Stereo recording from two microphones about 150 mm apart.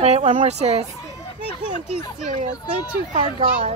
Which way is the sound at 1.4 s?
40° left (ahead or behind).